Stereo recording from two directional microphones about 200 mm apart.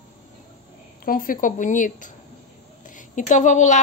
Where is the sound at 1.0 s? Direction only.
45° left (ahead or behind).